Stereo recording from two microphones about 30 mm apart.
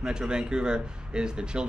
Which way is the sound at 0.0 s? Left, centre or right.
Right.